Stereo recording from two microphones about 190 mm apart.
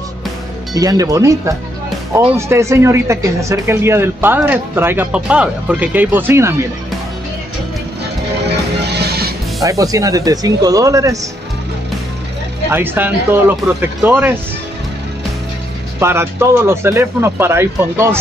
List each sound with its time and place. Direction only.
0.7 s speech: 20° right (ahead or behind)
8.7 s music: 60° right (ahead or behind)
9.6 s speech: 15° right (ahead or behind)
12.7 s speech: 10° right (ahead or behind)
16.0 s speech: 15° right (ahead or behind)